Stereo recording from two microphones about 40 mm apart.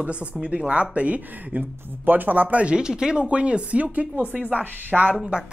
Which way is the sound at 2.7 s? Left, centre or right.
Right.